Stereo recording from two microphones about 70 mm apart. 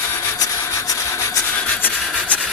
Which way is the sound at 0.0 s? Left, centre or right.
Left.